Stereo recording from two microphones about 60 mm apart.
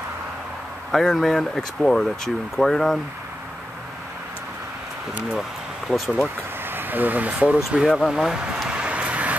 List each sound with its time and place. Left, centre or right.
0.9 s speech: centre
5.9 s speech: left
6.7 s speech: right; by 8.0 s centre
8.1 s a sound: centre